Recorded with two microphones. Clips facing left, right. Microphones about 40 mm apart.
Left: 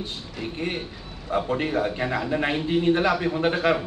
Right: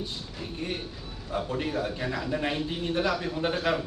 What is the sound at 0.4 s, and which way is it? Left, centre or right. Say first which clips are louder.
A man's voice: left 5 dB; left.